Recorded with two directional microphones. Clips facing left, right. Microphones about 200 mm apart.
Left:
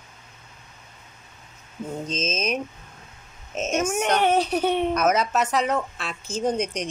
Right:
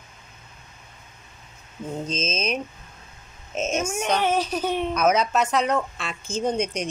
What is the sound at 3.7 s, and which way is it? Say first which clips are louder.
A child's voice: left 3 dB; 65° left (ahead or behind).